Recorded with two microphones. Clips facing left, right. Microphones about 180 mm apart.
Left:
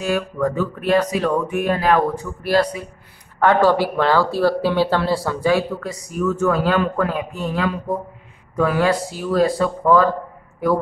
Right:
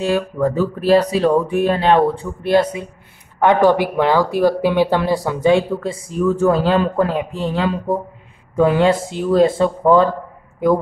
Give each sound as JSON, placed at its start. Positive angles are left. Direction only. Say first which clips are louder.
{"t": 0.0, "sound": "speech", "louder": "right 3 dB", "side_deg": -30}